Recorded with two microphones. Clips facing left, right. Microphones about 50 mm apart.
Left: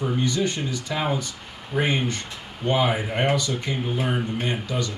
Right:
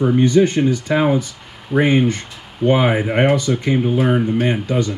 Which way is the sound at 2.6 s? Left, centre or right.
Right.